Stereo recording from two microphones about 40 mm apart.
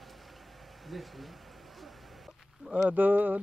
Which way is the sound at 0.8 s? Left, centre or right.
Centre.